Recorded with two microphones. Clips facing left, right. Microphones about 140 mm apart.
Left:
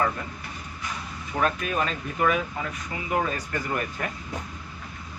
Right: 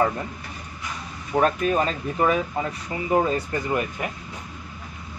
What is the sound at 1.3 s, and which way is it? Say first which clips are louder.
Speech: right 6 dB; 35° right (ahead or behind).